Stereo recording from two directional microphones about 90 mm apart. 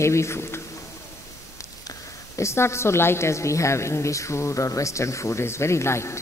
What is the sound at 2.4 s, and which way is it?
A woman's voice, 30° left (ahead or behind).